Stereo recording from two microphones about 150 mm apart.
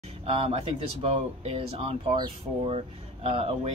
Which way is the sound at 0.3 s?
40° right (ahead or behind).